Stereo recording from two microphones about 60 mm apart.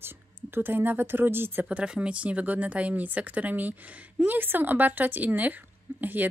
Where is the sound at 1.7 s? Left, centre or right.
Right.